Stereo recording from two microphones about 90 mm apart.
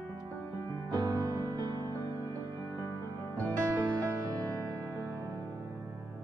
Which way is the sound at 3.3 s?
35° right (ahead or behind).